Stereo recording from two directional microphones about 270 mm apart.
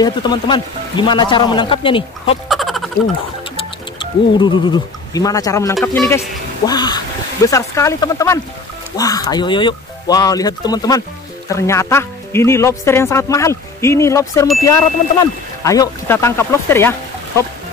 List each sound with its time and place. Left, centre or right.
0.0 s speech: centre
2.4 s a sound: centre
3.5 s speech: centre